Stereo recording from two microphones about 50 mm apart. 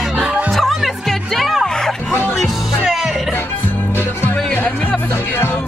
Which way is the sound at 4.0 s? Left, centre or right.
Left.